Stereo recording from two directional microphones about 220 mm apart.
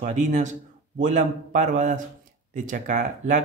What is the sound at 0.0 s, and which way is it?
Speech, 35° right (ahead or behind).